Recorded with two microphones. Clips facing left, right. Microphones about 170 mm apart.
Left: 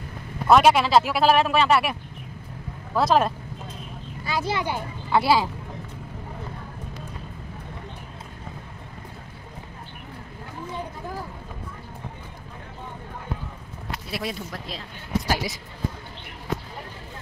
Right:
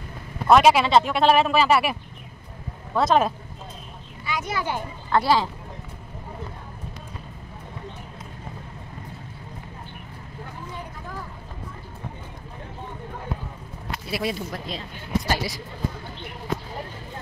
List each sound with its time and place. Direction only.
0.5 s speech: centre (ahead or behind)
4.3 s a child's voice: 30° left (ahead or behind)
4.6 s speech: 10° left (ahead or behind)
14.1 s speech: centre (ahead or behind)
15.2 s speech: 10° left (ahead or behind)